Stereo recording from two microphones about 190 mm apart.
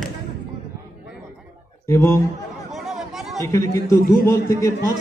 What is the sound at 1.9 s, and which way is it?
Speech, 15° left (ahead or behind).